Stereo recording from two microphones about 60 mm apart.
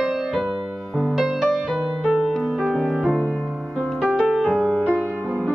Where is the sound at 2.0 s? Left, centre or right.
Centre.